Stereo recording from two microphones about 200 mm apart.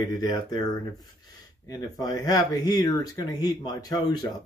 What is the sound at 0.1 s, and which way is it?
Speech, 20° left (ahead or behind).